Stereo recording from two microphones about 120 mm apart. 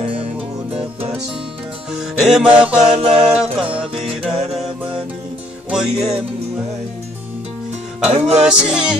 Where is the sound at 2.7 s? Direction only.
65° right (ahead or behind).